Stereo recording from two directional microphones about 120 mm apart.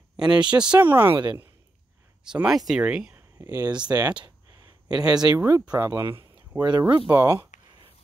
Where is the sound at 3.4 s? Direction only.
30° right (ahead or behind).